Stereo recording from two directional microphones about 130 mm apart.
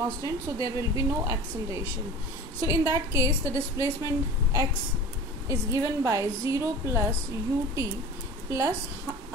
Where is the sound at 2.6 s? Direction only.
25° right (ahead or behind).